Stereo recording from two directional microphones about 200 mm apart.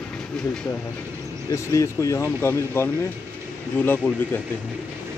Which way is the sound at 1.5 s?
15° left (ahead or behind).